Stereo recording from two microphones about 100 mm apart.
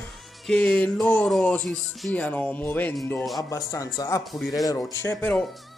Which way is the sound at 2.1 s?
15° left (ahead or behind).